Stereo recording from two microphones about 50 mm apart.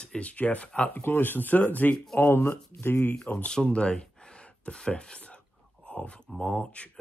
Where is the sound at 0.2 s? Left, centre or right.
Left.